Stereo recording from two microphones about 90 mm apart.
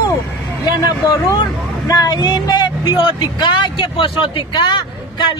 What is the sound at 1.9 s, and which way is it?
A man's voice, 45° left (ahead or behind).